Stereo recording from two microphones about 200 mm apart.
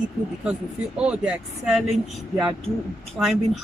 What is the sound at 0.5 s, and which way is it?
Speech, 5° right (ahead or behind).